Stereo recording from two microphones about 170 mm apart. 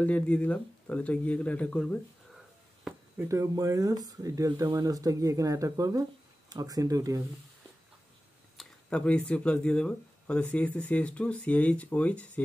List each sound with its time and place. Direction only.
0.0 s speech: 10° left (ahead or behind)
3.2 s speech: 20° right (ahead or behind)
8.5 s speech: 5° left (ahead or behind)